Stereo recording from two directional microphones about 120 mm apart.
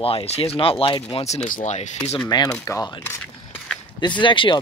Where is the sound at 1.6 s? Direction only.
75° left (ahead or behind).